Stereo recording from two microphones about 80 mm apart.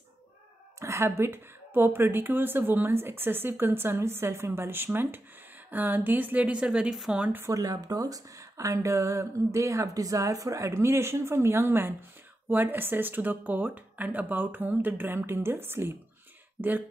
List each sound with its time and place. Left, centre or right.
0.7 s speech: right; by 7.2 s centre
7.5 s speech: right